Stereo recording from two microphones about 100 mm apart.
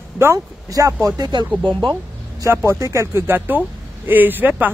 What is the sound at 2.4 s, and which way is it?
Speech, 25° right (ahead or behind).